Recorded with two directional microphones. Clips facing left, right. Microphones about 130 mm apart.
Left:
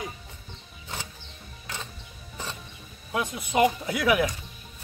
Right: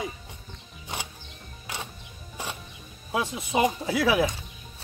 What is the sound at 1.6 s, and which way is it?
Music, 15° right (ahead or behind).